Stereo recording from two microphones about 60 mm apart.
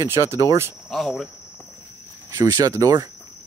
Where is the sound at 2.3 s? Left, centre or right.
Right.